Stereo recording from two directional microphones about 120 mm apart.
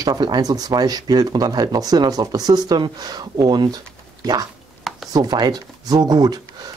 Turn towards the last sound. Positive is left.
turn(degrees=-35)  # may be behind; listen again after turning